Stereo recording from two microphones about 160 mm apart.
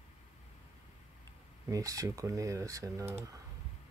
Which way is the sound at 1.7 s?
20° right (ahead or behind).